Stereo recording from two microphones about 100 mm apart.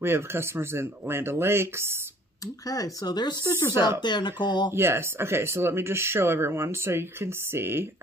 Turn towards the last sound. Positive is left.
turn(degrees=-25)  # may be behind; listen again after turning